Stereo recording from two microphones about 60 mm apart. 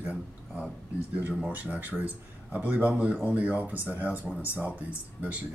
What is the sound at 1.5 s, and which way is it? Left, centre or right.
Speech, right.